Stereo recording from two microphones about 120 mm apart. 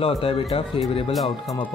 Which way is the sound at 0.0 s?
50° left (ahead or behind).